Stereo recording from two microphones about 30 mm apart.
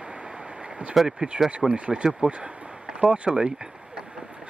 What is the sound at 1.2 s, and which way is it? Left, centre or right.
Speech, right.